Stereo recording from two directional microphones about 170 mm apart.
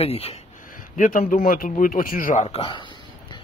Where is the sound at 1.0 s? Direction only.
55° left (ahead or behind); by 2.8 s 30° left (ahead or behind).